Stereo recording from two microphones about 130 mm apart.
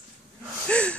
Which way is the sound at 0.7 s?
10° left (ahead or behind).